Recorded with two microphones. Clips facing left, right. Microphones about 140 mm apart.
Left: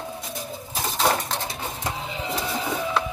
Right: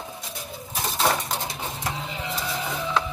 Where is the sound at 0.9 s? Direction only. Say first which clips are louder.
Left 1 dB; centre (ahead or behind).